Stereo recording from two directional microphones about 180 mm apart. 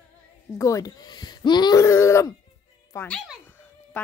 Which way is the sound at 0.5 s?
20° left (ahead or behind).